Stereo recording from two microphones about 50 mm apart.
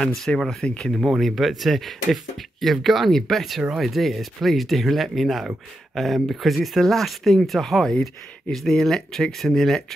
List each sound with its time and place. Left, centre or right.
0.0 s speech: centre
0.7 s speech: centre
1.2 s speech: centre